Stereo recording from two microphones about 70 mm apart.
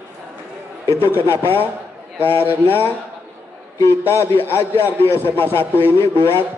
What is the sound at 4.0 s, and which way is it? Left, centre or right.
Speech, right.